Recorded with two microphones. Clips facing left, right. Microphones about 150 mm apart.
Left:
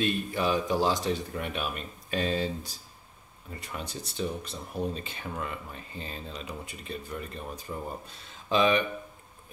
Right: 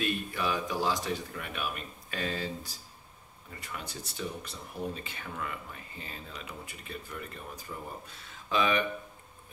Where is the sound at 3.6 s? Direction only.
25° left (ahead or behind).